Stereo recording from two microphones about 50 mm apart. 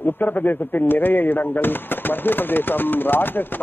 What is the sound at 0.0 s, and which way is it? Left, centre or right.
Speech, left.